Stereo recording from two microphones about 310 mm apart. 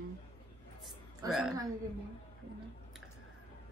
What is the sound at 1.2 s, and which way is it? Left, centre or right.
Speech, centre.